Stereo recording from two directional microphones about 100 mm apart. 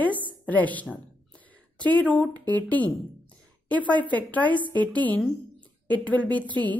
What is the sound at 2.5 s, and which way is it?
A woman's voice, 15° left (ahead or behind).